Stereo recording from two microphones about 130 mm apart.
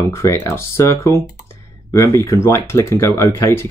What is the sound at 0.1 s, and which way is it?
Speech, 20° left (ahead or behind).